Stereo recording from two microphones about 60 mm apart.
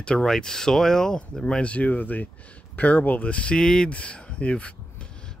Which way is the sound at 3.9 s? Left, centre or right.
Left.